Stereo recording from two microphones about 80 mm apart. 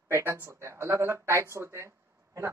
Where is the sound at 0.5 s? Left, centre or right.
Right.